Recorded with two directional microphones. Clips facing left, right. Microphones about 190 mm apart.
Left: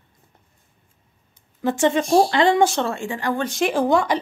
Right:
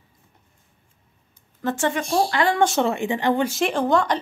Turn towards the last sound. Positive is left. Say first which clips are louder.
# left 2 dB
turn(degrees=10)  # may be behind; listen again after turning